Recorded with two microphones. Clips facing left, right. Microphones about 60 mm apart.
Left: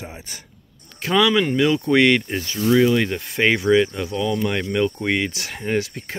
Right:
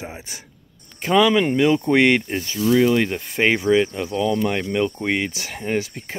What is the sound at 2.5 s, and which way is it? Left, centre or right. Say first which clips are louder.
Speech: even; left.